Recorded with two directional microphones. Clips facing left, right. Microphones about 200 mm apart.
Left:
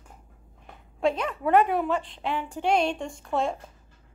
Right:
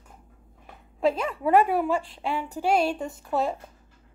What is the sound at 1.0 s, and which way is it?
A woman's voice, 5° right (ahead or behind).